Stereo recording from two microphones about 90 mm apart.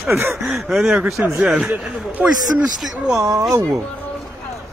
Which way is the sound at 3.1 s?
40° right (ahead or behind).